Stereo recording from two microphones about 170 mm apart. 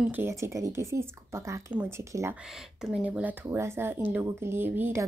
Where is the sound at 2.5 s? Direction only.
5° right (ahead or behind).